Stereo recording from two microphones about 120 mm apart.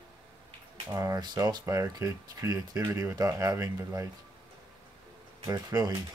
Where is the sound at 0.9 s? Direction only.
25° right (ahead or behind).